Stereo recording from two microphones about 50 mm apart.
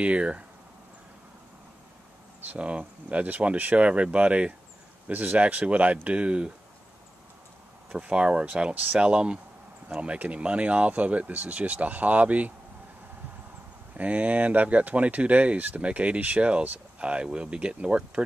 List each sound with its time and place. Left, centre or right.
0.0 s speech: right
2.4 s speech: right
7.9 s speech: centre
8.7 s speech: right
9.0 s speech: right
13.9 s speech: right